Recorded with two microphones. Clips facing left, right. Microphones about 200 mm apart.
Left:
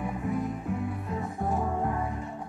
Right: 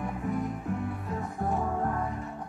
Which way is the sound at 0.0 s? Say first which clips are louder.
Left 1 dB; 5° left (ahead or behind).